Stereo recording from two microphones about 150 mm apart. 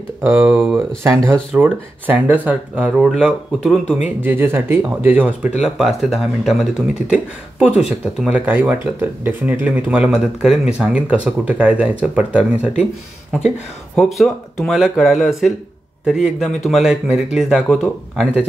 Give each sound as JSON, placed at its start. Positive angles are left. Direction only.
{"t": 0.2, "sound": "speech", "side_deg": -15}
{"t": 13.9, "sound": "speech", "side_deg": 0}